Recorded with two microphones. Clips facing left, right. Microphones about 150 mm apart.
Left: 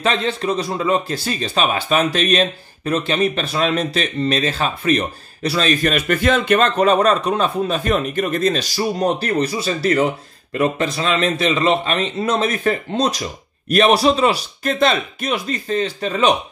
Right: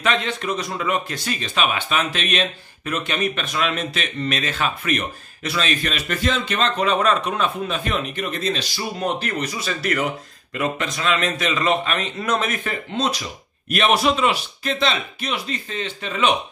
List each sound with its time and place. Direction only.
0.0 s speech: 30° left (ahead or behind)